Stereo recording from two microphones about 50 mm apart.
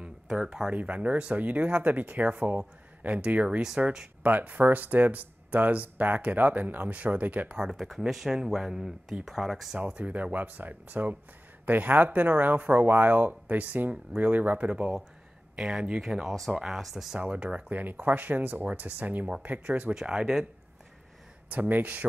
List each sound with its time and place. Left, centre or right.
0.0 s a sound: centre
0.7 s speech: right
3.4 s speech: centre
4.2 s speech: right
8.1 s speech: centre
9.9 s speech: right
16.5 s speech: centre
17.2 s speech: right
17.6 s speech: right
19.9 s speech: centre
21.5 s speech: right